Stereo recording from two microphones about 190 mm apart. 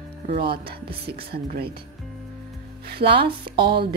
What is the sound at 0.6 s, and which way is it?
Speech, 30° right (ahead or behind).